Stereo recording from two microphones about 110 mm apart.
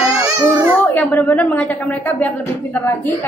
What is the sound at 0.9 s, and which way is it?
A woman's voice, 15° left (ahead or behind).